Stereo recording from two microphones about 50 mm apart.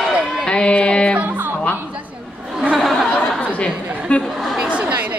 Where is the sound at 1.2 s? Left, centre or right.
Right.